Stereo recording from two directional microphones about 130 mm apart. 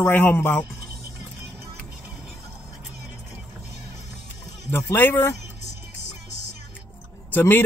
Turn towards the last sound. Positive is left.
turn(degrees=15)  # may be behind; listen again after turning